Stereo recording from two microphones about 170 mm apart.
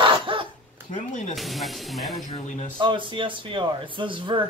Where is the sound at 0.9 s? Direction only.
45° left (ahead or behind).